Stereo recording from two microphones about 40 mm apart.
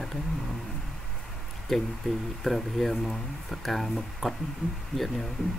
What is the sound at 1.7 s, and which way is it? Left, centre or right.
Speech, centre.